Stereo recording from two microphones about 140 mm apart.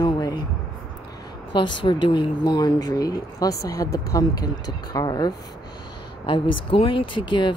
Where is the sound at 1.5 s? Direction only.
35° left (ahead or behind).